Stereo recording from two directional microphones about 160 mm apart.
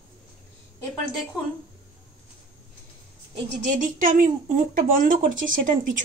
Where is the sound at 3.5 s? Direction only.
55° right (ahead or behind).